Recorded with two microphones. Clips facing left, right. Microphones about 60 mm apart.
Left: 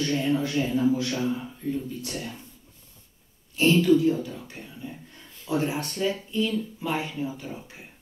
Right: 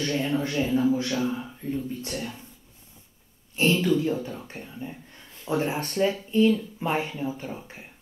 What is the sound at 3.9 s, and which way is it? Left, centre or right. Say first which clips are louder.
Speech: left 3 dB; right.